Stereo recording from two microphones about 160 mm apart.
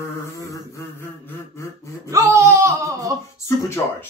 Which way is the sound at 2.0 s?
20° right (ahead or behind).